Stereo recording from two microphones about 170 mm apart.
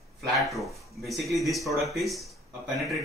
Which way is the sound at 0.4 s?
Centre (ahead or behind).